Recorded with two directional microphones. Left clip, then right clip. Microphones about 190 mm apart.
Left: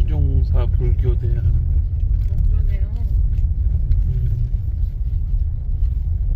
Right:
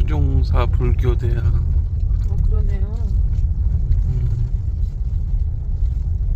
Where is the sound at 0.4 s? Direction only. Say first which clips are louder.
Right 6 dB; 20° right (ahead or behind).